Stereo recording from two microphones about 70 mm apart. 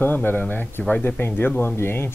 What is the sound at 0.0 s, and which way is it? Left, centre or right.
Speech, left.